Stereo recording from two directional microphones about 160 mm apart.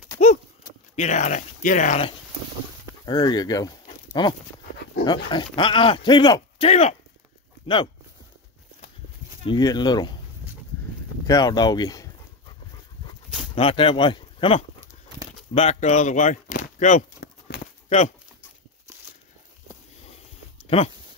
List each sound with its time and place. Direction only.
0.9 s speech: 50° left (ahead or behind)
3.1 s speech: 25° left (ahead or behind)
6.7 s speech: 40° left (ahead or behind)
7.6 s speech: 30° left (ahead or behind)
9.4 s speech: 30° left (ahead or behind)
11.2 s dog: 25° left (ahead or behind)
13.6 s speech: 35° left (ahead or behind)
17.5 s a sound: 80° left
17.8 s speech: 40° left (ahead or behind)